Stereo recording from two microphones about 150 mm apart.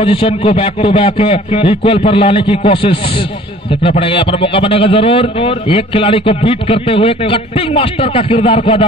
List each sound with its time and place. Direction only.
0.0 s a man's voice: 35° left (ahead or behind)
4.0 s a man's voice: 35° left (ahead or behind)